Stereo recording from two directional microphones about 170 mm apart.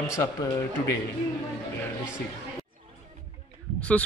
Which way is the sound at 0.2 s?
20° left (ahead or behind).